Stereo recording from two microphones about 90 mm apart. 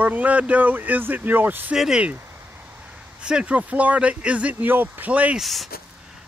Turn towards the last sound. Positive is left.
turn(degrees=0)  # may be behind; listen again after turning